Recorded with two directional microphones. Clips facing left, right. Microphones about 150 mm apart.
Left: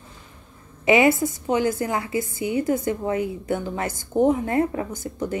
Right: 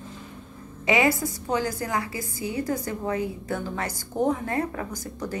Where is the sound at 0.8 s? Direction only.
25° left (ahead or behind).